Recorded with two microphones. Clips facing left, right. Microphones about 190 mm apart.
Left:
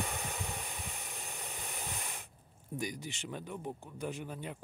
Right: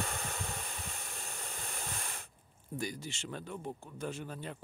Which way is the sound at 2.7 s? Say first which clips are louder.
Even; 15° left (ahead or behind).